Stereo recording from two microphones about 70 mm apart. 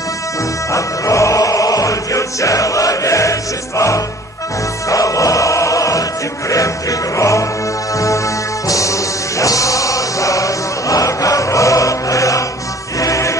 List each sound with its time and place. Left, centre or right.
0.7 s music: left
8.6 s music: left